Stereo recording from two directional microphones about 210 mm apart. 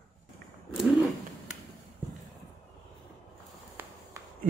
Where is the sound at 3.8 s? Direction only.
10° right (ahead or behind).